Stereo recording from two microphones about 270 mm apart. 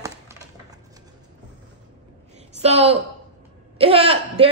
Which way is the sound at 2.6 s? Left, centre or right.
Right.